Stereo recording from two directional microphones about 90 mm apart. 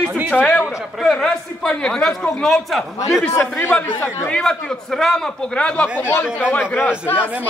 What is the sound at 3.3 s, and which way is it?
A man's voice, 25° left (ahead or behind).